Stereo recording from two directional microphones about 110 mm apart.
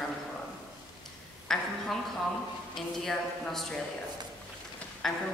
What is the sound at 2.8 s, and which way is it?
A man's voice, 5° left (ahead or behind).